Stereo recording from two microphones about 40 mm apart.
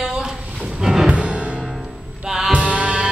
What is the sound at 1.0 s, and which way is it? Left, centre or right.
Music, right.